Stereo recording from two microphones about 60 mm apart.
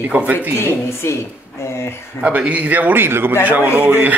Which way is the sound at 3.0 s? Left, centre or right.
Right.